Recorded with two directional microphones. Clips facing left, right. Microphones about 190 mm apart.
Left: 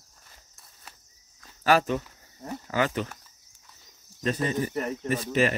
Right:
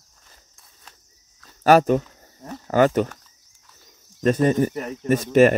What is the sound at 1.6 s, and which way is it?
Speech, 45° right (ahead or behind).